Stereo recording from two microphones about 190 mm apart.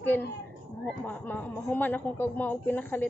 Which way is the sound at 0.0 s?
10° left (ahead or behind).